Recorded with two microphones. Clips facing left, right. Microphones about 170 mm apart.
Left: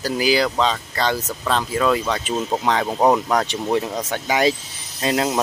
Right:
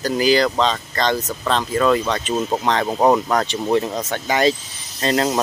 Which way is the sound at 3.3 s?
5° left (ahead or behind).